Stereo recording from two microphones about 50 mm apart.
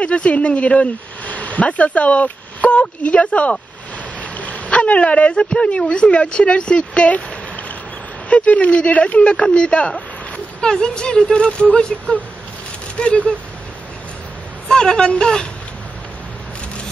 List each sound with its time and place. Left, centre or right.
0.0 s a woman's voice: left
14.7 s a woman's voice: centre